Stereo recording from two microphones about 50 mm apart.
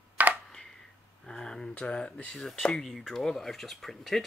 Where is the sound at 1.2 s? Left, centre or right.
Centre.